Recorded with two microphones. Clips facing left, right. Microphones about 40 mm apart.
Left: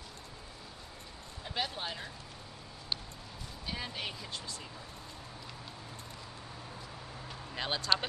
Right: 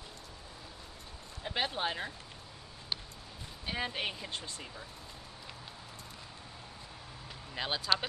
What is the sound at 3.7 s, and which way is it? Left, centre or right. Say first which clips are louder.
Speech: right 4 dB; right.